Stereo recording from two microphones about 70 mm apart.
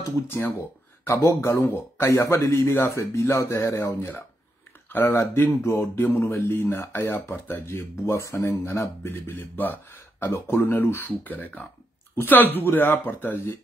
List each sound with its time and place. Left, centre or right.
0.3 s speech: left
1.2 s speech: left
3.0 s speech: left
4.8 s a sound: left
5.1 s speech: left